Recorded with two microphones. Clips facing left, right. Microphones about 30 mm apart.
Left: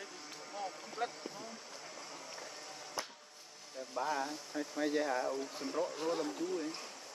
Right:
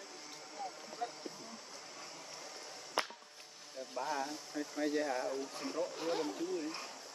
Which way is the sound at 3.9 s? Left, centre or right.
Centre.